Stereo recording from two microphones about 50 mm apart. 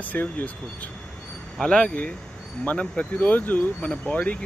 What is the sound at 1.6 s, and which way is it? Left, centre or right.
Speech, centre.